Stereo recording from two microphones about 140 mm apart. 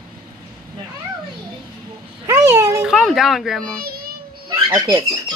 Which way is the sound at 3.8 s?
90° right.